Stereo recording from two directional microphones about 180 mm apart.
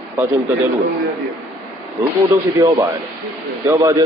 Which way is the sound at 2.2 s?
15° right (ahead or behind).